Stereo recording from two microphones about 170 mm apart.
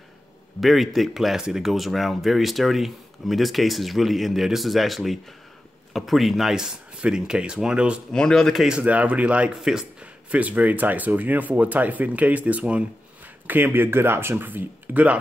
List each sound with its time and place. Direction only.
0.6 s speech: centre (ahead or behind)